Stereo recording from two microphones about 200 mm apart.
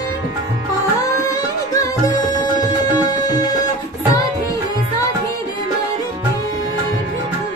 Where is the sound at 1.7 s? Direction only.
20° left (ahead or behind).